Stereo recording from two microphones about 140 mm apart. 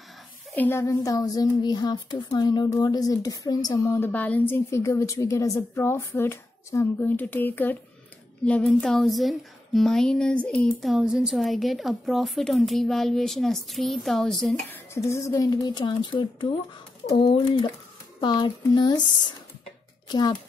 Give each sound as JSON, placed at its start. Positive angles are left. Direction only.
{"t": 0.6, "sound": "speech", "side_deg": 15}
{"t": 14.7, "sound": "speech", "side_deg": 20}